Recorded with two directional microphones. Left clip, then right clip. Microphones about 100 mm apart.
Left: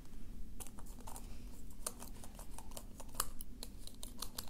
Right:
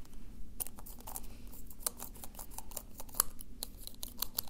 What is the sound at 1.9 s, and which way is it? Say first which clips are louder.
Scissors: right 5 dB; 35° right (ahead or behind).